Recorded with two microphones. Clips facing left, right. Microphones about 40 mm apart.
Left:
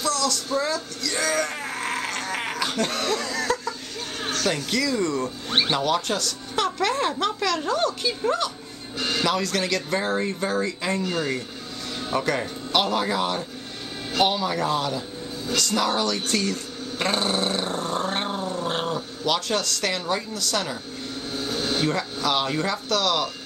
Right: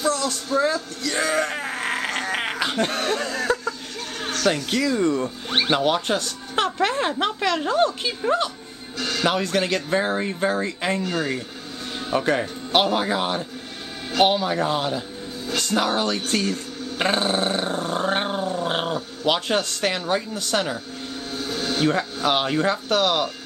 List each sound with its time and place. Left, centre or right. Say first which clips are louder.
0.0 s a sound: right 1 dB; right
4.2 s a sound: right 1 dB; centre
4.6 s speech: right 3 dB; right
8.9 s speech: even; centre
9.2 s speech: right 3 dB; right
11.1 s a man's voice: right 1 dB; centre
12.7 s speech: right 2 dB; right
17.0 s roar: right 2 dB; right
17.9 s growling: right 5 dB; right
19.2 s speech: right 3 dB; right
21.3 s a sound: even; centre
21.8 s speech: right 3 dB; right